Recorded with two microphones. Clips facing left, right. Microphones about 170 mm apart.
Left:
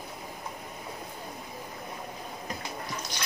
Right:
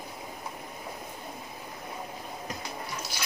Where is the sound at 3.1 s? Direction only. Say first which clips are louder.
Right 1 dB; 5° right (ahead or behind).